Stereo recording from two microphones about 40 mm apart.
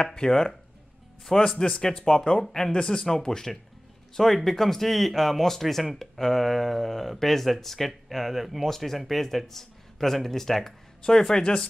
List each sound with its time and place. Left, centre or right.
0.0 s speech: centre